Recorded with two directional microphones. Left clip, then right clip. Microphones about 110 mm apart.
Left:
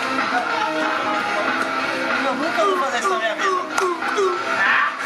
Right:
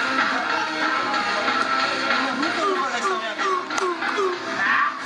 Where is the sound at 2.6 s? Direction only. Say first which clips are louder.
Left 6 dB; 20° left (ahead or behind).